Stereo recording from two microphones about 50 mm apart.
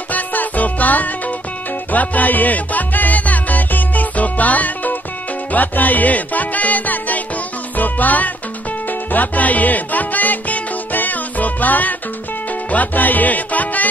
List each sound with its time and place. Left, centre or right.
0.1 s music: left